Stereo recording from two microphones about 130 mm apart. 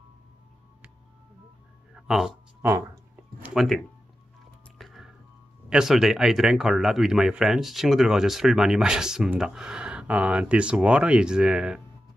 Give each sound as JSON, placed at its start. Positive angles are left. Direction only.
{"t": 2.0, "sound": "speech", "side_deg": -5}
{"t": 3.4, "sound": "speech", "side_deg": 0}
{"t": 4.7, "sound": "music", "side_deg": 0}
{"t": 5.7, "sound": "speech", "side_deg": -5}